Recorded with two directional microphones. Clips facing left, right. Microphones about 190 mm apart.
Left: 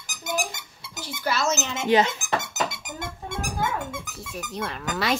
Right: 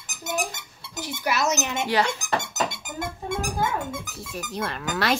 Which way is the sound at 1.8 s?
20° left (ahead or behind).